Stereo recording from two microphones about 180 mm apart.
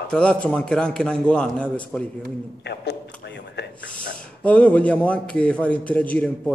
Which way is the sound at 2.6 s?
70° left (ahead or behind).